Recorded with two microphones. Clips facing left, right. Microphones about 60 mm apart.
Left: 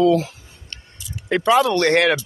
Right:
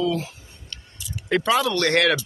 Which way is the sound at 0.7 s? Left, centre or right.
Left.